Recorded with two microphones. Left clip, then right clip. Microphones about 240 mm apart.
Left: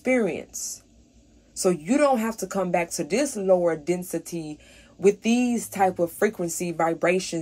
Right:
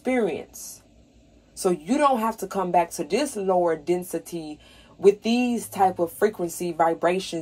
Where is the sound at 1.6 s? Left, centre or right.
Left.